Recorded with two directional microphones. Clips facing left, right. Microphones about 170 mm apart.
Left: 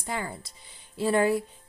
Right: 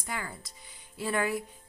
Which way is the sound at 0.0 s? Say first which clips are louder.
Left 5 dB; 30° left (ahead or behind).